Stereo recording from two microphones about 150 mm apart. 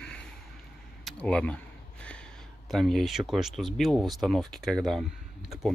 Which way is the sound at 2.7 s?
Centre (ahead or behind).